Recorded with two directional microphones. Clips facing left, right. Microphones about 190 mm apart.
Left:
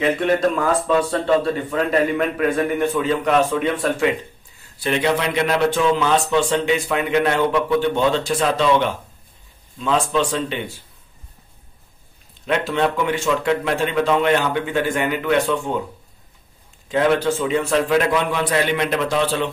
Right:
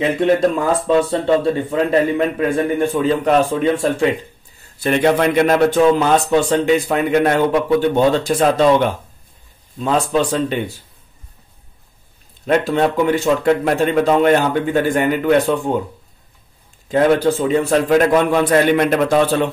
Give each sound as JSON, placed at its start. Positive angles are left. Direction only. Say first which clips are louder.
{"t": 0.2, "sound": "a man's voice", "louder": "right 3 dB", "side_deg": -25}
{"t": 4.7, "sound": "a man's voice", "louder": "right 5 dB", "side_deg": -50}
{"t": 12.4, "sound": "a man's voice", "louder": "right 4 dB", "side_deg": -45}
{"t": 16.9, "sound": "a man's voice", "louder": "right 4 dB", "side_deg": -40}